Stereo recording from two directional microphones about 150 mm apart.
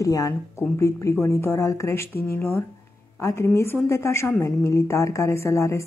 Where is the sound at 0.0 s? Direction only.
20° left (ahead or behind).